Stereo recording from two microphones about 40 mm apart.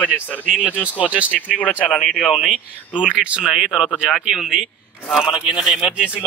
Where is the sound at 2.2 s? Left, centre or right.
Centre.